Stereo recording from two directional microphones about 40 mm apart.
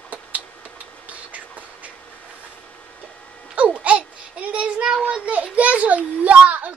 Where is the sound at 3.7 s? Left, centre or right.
Right.